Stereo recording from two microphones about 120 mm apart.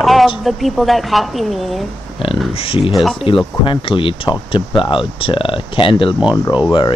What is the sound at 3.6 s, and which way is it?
Speech, 45° left (ahead or behind).